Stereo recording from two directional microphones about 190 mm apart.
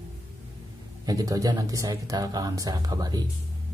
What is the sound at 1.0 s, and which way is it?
Speech, 20° right (ahead or behind).